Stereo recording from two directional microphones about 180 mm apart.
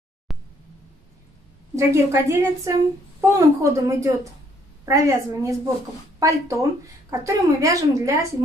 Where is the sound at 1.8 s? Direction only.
15° right (ahead or behind).